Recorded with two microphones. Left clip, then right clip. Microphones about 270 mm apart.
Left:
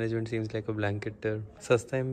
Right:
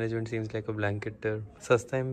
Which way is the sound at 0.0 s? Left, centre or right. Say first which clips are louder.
Left 1 dB; centre.